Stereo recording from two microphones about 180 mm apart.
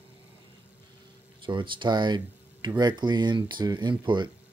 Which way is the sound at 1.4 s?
25° right (ahead or behind).